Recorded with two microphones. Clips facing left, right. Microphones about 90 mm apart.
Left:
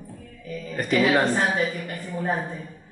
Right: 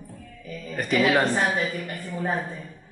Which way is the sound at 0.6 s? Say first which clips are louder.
Left 1 dB; centre (ahead or behind).